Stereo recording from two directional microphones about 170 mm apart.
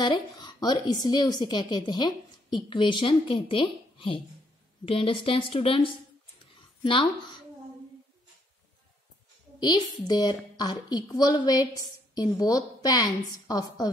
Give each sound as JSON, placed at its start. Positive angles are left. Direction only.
{"t": 0.0, "sound": "a woman's voice", "side_deg": 25}
{"t": 10.0, "sound": "speech", "side_deg": 25}